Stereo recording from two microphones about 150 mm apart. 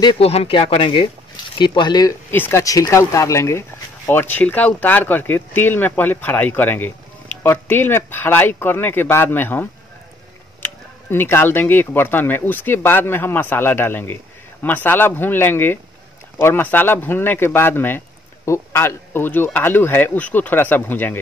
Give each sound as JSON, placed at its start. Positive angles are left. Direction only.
{"t": 0.0, "sound": "speech", "side_deg": 30}
{"t": 2.3, "sound": "speech", "side_deg": 15}